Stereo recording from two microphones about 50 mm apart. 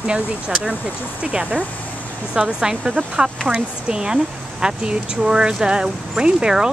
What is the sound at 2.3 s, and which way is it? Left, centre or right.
Speech, centre.